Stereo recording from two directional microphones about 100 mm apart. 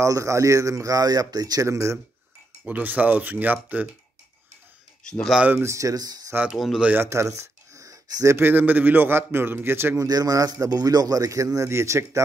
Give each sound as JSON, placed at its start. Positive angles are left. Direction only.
{"t": 0.0, "sound": "a man's voice", "side_deg": -30}
{"t": 2.6, "sound": "speech", "side_deg": -15}
{"t": 5.6, "sound": "a man's voice", "side_deg": -30}
{"t": 6.5, "sound": "speech", "side_deg": 0}
{"t": 6.8, "sound": "speech", "side_deg": -15}
{"t": 7.1, "sound": "a sound", "side_deg": -30}
{"t": 8.4, "sound": "a man's voice", "side_deg": -20}
{"t": 10.0, "sound": "a man's voice", "side_deg": -40}